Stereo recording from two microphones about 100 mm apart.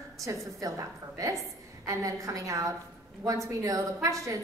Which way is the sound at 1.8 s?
35° right (ahead or behind).